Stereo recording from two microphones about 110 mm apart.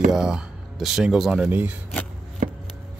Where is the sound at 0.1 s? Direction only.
5° right (ahead or behind).